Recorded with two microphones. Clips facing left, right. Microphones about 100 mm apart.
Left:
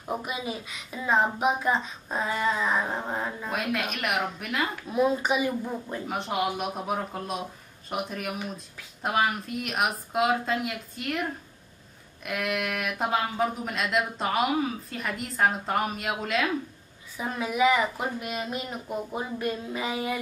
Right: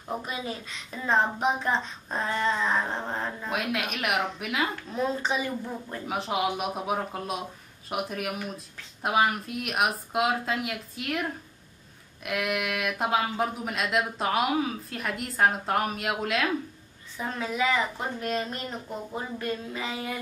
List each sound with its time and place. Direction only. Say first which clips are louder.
0.0 s speech: left 1 dB; 10° left (ahead or behind)
4.8 s speech: left 4 dB; 10° left (ahead or behind)
6.0 s speech: right 1 dB; centre (ahead or behind)
12.3 s speech: even; centre (ahead or behind)
17.2 s speech: left 4 dB; 10° left (ahead or behind)